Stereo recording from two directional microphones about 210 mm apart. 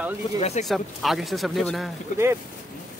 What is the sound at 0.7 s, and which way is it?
Speech, centre (ahead or behind).